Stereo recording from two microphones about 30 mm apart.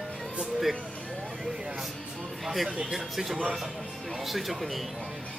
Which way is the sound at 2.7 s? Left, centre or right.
Right.